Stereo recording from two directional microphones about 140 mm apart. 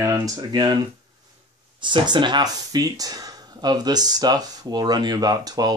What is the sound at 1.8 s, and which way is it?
Speech, 35° right (ahead or behind).